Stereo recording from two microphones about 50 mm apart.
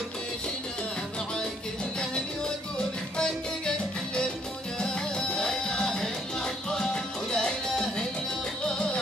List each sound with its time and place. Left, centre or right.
3.2 s music: centre